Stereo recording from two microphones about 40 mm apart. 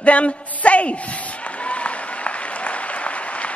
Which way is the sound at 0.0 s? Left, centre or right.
Left.